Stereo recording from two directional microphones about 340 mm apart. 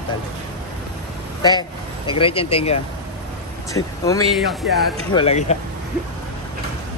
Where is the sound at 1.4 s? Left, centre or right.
Centre.